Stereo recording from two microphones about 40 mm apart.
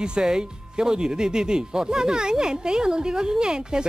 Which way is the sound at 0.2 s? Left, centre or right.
Centre.